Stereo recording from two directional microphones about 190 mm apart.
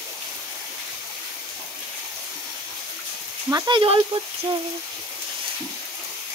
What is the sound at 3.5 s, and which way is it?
Speech, 25° right (ahead or behind).